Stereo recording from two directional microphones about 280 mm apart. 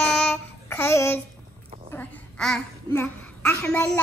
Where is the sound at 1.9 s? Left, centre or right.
Centre.